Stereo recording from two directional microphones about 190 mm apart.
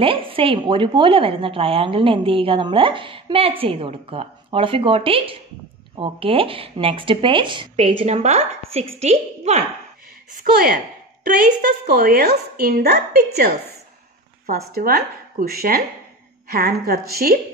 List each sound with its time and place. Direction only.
0.0 s speech: 30° right (ahead or behind)
8.0 s a woman's voice: 35° right (ahead or behind)
10.4 s a woman's voice: 50° right (ahead or behind)
11.9 s a woman's voice: 55° right (ahead or behind)